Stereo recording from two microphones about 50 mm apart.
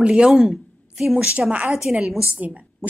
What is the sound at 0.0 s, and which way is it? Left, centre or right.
Speech, centre.